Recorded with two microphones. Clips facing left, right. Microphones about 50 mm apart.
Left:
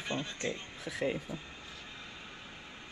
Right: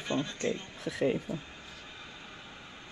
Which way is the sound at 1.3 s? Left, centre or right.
Right.